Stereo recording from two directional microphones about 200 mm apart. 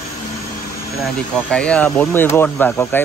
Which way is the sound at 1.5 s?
5° left (ahead or behind).